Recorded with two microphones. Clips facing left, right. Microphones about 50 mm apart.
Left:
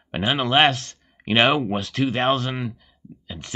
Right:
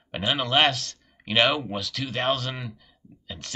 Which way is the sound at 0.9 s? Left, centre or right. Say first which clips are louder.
Left 6 dB; left.